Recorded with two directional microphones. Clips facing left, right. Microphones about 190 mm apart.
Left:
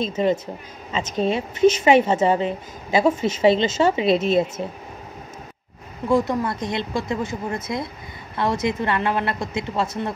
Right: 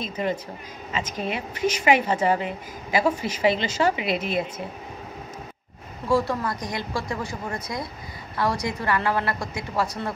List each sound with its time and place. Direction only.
0.0 s a woman's voice: 25° left (ahead or behind)
6.0 s a woman's voice: 20° left (ahead or behind)